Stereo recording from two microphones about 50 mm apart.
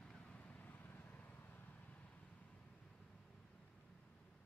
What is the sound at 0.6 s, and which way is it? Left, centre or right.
Vehicle, left.